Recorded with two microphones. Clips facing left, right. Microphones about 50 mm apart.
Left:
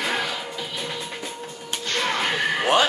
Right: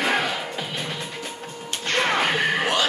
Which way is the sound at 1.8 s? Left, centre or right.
Right.